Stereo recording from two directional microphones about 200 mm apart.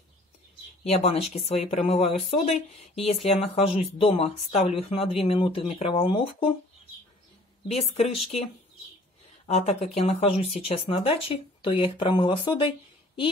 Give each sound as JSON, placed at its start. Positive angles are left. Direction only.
{"t": 0.8, "sound": "speech", "side_deg": 30}
{"t": 7.6, "sound": "speech", "side_deg": 30}
{"t": 9.5, "sound": "speech", "side_deg": 35}